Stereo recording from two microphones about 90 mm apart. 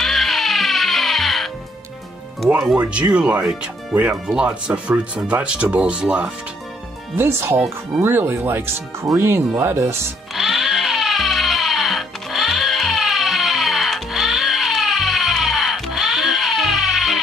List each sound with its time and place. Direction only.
0.0 s music: centre (ahead or behind)
2.7 s speech: 15° right (ahead or behind)
7.2 s speech: 30° right (ahead or behind)
10.3 s music: 5° right (ahead or behind)